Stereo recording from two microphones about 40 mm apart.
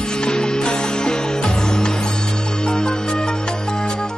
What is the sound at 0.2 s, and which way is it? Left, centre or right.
Music, left.